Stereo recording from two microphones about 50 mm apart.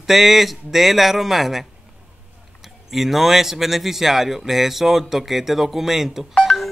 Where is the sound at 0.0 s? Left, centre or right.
Centre.